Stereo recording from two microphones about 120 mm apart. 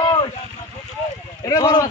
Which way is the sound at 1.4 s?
35° left (ahead or behind).